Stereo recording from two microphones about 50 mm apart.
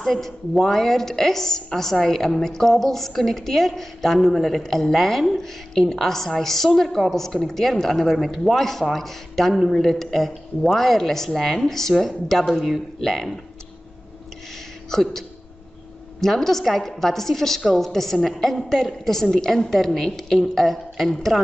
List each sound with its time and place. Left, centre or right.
0.0 s a woman's voice: centre
14.9 s a woman's voice: centre